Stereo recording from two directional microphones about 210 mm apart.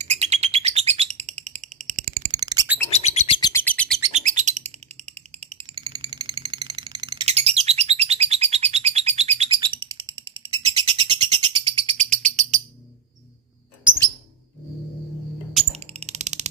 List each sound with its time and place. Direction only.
0.0 s bird: 30° right (ahead or behind)
2.3 s bird: 20° right (ahead or behind)
2.9 s bird: 30° left (ahead or behind)
3.3 s bird: 20° left (ahead or behind)
3.6 s bird: 5° left (ahead or behind)
4.1 s bird: 35° right (ahead or behind)
15.7 s a sound: 30° right (ahead or behind)